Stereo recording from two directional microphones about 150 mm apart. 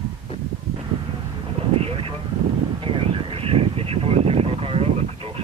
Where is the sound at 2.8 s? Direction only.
35° right (ahead or behind).